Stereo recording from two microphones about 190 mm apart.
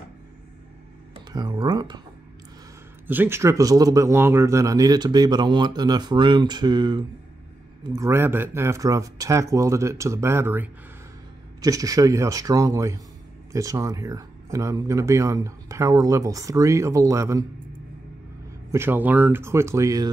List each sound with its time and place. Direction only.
1.1 s speech: 25° right (ahead or behind)
3.1 s speech: 10° right (ahead or behind)
18.7 s speech: 10° right (ahead or behind)